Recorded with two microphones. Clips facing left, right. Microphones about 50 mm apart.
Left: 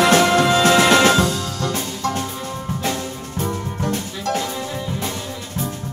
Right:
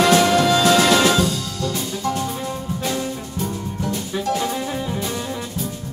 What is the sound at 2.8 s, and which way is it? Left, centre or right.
Music, left.